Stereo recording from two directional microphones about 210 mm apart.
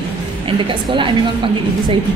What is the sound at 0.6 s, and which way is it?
Speech, 25° right (ahead or behind).